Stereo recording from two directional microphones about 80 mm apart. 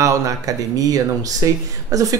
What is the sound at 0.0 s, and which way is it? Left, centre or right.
Speech, right.